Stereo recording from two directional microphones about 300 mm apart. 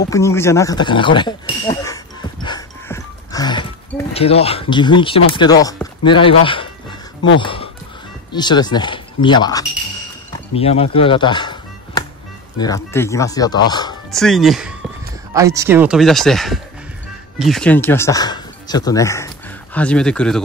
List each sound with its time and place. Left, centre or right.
0.1 s speech: centre
2.4 s music: centre
6.1 s speech: centre
14.1 s speech: centre